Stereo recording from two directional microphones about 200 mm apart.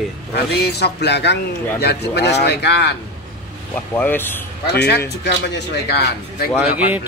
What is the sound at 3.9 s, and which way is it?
Speech, 10° left (ahead or behind).